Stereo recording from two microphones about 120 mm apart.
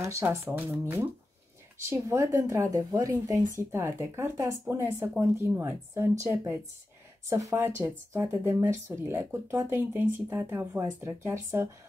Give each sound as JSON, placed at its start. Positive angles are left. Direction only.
{"t": 0.0, "sound": "speech", "side_deg": -25}